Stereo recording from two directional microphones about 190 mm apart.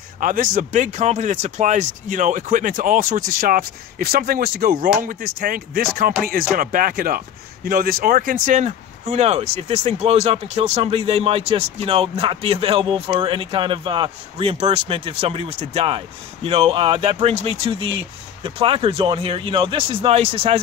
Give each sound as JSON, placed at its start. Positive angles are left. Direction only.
{"t": 0.2, "sound": "speech", "side_deg": -45}